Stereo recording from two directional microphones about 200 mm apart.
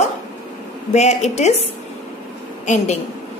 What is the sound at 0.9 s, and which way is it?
Speech, 35° left (ahead or behind).